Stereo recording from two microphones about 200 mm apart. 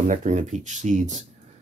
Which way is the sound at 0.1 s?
35° right (ahead or behind).